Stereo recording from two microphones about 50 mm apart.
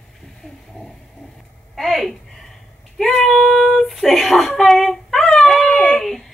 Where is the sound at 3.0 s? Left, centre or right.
Centre.